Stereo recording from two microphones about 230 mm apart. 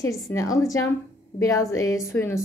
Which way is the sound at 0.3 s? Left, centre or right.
Centre.